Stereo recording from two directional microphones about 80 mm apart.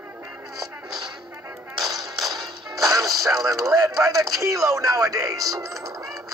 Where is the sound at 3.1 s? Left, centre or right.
Right.